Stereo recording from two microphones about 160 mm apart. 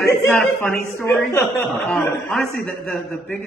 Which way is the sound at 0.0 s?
15° left (ahead or behind).